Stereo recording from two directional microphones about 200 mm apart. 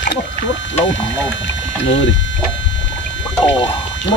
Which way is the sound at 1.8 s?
65° left (ahead or behind).